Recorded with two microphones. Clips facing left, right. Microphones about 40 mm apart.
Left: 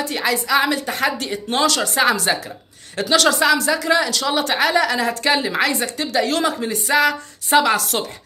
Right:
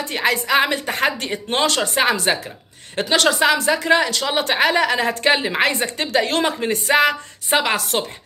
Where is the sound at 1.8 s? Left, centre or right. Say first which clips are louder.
Left 1 dB; right.